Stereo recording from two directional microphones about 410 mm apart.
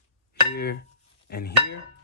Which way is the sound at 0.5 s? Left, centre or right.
Left.